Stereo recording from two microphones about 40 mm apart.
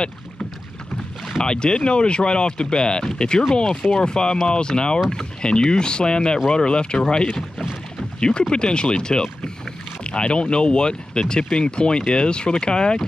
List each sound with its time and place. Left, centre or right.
1.4 s speech: left